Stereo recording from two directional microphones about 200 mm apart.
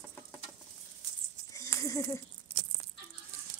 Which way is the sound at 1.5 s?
15° left (ahead or behind).